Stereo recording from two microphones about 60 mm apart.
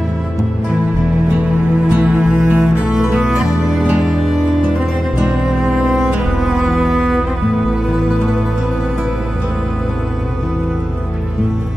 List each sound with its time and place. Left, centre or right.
2.0 s music: right
2.6 s music: centre
5.2 s music: centre
6.4 s cello: centre